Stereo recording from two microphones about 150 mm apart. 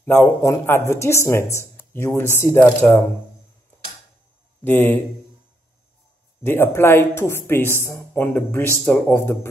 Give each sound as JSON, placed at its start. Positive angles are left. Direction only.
{"t": 0.0, "sound": "a woman's voice", "side_deg": 15}
{"t": 4.6, "sound": "a woman's voice", "side_deg": 15}
{"t": 6.4, "sound": "a woman's voice", "side_deg": 15}